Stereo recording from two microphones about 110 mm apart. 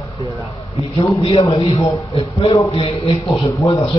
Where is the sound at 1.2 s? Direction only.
60° left (ahead or behind).